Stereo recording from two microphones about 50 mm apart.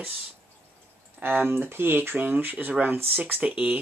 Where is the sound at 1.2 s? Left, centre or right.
Right.